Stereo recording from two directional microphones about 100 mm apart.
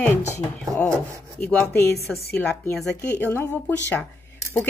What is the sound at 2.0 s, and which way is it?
Speech, centre (ahead or behind).